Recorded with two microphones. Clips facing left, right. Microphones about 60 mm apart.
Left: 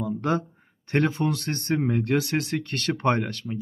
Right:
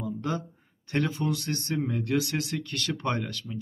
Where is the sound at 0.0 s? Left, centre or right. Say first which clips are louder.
Left 6 dB; left.